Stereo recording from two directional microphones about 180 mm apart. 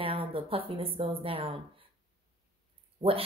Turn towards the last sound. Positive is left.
turn(degrees=-30)  # may be behind; listen again after turning